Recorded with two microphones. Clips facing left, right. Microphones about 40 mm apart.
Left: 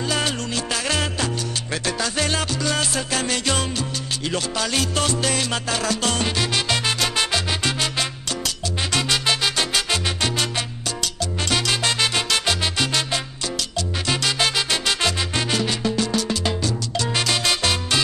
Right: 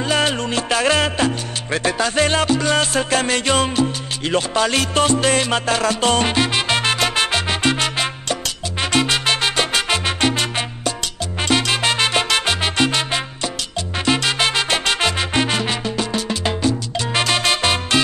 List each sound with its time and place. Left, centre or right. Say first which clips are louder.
0.1 s music: right 7 dB; right
11.4 s salsa music: right 4 dB; right
14.0 s music: right 4 dB; right